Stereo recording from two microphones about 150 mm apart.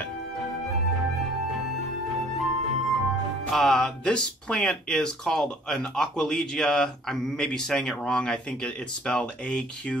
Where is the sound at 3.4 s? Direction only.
Centre (ahead or behind).